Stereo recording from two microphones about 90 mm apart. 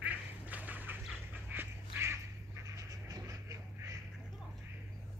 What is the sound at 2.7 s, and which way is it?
Duck, 40° right (ahead or behind).